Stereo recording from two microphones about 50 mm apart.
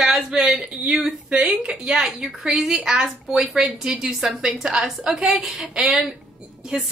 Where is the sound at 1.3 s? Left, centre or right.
Centre.